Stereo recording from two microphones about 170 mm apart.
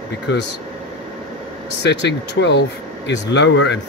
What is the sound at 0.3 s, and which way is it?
Speech, 90° left.